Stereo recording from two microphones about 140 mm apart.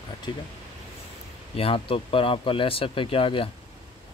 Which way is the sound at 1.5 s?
40° left (ahead or behind).